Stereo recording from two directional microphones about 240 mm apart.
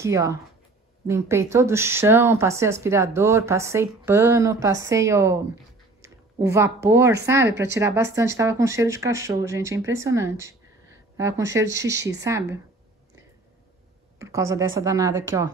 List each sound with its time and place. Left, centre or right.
0.0 s speech: centre
6.4 s speech: centre
14.1 s speech: centre